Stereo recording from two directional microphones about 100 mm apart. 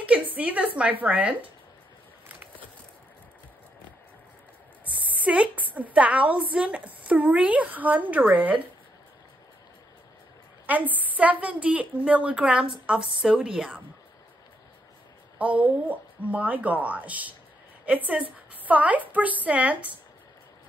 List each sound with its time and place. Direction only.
0.0 s a sound: 15° right (ahead or behind)
0.7 s a woman's voice: 15° right (ahead or behind)
5.1 s a woman's voice: 10° right (ahead or behind)
10.7 s a woman's voice: 15° right (ahead or behind)
15.3 s a woman's voice: 15° right (ahead or behind)